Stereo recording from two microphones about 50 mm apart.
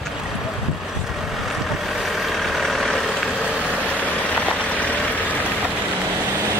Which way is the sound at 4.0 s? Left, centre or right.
Left.